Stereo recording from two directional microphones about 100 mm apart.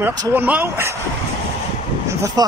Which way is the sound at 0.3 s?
20° right (ahead or behind).